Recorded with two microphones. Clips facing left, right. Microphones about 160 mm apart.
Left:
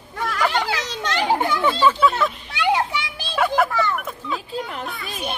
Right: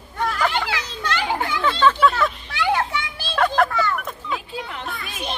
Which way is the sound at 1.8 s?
5° left (ahead or behind).